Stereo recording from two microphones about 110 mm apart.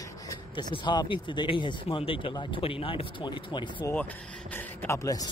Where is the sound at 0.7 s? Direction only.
45° left (ahead or behind).